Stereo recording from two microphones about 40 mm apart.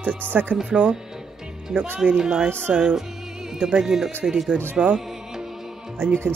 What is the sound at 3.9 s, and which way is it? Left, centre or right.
Speech, centre.